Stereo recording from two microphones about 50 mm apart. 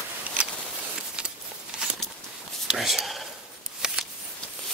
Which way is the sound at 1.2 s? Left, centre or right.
Centre.